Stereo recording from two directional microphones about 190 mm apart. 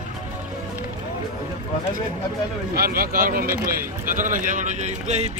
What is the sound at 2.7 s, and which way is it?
Speech, 50° right (ahead or behind).